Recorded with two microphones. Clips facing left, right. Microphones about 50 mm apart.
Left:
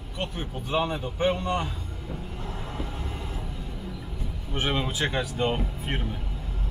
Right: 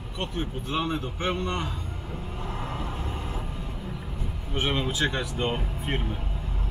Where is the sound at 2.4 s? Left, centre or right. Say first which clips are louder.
Right 4 dB; right.